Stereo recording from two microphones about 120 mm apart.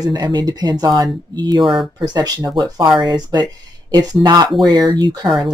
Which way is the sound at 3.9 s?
35° right (ahead or behind).